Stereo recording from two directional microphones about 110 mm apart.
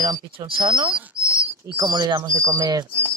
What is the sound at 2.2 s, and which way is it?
Bird flight, 30° right (ahead or behind).